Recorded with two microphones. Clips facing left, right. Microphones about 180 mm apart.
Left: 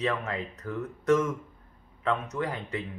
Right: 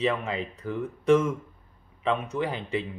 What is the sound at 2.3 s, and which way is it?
Speech, 25° right (ahead or behind).